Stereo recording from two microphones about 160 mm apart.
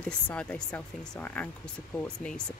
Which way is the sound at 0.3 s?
10° left (ahead or behind).